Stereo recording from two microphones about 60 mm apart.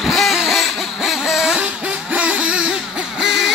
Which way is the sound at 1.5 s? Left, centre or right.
Centre.